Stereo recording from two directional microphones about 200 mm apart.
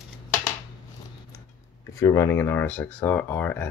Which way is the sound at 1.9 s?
15° left (ahead or behind).